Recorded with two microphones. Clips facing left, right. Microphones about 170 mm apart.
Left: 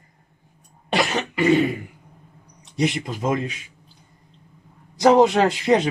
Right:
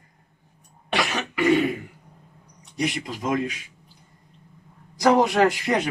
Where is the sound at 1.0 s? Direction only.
30° left (ahead or behind).